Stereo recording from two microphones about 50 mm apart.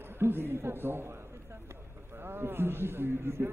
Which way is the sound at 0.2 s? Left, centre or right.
Right.